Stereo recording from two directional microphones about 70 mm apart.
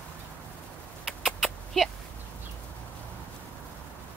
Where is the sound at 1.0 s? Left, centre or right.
Centre.